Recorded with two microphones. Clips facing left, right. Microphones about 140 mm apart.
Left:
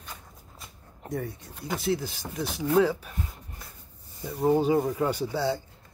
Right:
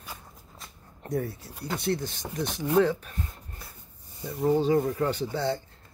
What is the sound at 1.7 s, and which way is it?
Speech, 5° left (ahead or behind).